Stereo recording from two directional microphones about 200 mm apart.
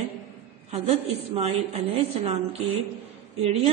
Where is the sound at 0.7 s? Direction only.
30° right (ahead or behind).